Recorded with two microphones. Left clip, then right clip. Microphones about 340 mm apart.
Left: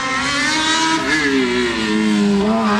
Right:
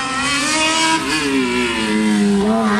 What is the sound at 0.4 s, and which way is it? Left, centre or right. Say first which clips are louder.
Vehicle: even; centre.